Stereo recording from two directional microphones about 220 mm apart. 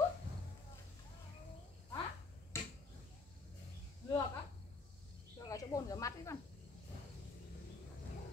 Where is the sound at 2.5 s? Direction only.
10° left (ahead or behind).